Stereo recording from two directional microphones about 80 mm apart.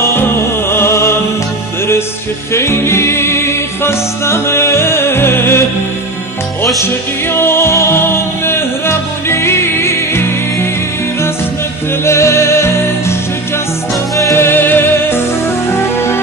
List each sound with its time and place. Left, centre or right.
0.0 s music: left
2.5 s music: left
6.8 s music: left
12.0 s music: left
14.3 s music: left